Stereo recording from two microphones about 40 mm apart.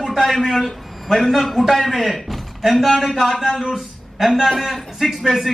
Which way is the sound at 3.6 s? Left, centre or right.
Centre.